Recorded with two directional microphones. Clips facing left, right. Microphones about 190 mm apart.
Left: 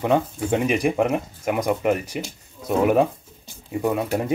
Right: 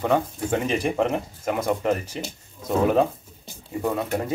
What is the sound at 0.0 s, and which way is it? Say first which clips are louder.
Speech: left 2 dB; 15° left (ahead or behind).